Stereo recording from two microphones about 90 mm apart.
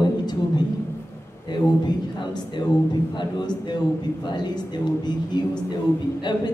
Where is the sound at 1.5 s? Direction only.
55° left (ahead or behind).